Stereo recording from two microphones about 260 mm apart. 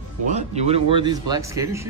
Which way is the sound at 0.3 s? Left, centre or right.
Right.